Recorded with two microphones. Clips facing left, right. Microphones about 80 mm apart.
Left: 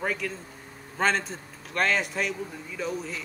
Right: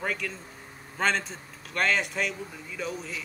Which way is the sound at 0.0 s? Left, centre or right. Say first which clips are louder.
Left 2 dB; centre.